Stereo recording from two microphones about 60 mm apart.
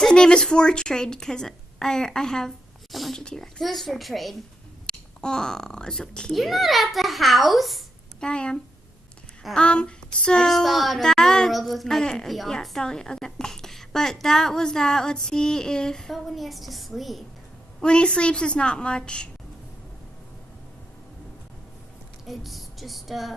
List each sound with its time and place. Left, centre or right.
0.1 s a woman's voice: centre
4.8 s speech: centre
6.3 s a child's voice: centre
8.2 s a woman's voice: centre
9.6 s a woman's voice: centre
10.5 s a child's voice: centre
17.7 s a woman's voice: centre
22.2 s a sound: centre